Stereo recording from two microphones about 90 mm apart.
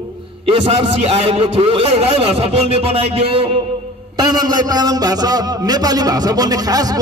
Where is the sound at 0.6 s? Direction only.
90° right.